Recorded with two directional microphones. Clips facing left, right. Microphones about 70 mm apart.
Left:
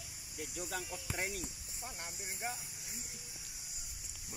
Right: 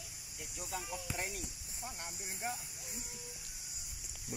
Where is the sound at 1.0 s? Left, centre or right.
Left.